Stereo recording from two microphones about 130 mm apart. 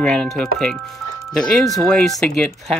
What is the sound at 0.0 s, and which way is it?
Speech, 5° left (ahead or behind).